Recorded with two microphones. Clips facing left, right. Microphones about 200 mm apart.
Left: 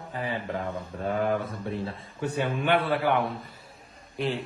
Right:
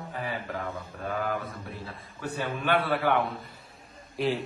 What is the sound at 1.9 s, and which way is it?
A man's voice, 20° left (ahead or behind).